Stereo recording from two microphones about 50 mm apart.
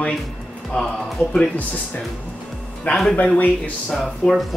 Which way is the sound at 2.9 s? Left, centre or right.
Left.